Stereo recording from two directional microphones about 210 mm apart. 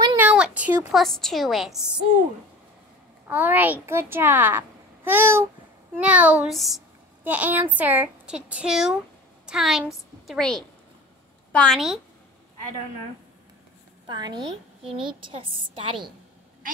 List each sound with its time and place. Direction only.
0.0 s a sound: 10° right (ahead or behind)
0.9 s speech: centre (ahead or behind)
3.3 s speech: 5° right (ahead or behind)
14.0 s a woman's voice: 20° right (ahead or behind)